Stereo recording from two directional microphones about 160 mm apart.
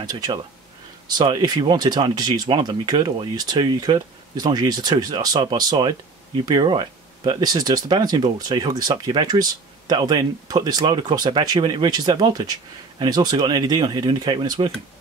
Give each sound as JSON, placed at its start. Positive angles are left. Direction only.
{"t": 0.0, "sound": "speech", "side_deg": -25}